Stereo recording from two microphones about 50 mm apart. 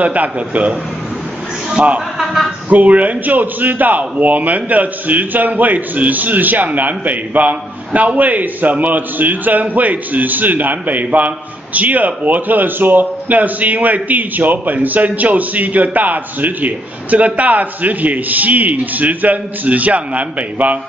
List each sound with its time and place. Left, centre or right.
0.0 s a man's voice: right
1.8 s a man's voice: right
2.1 s a sound: centre
2.7 s a man's voice: right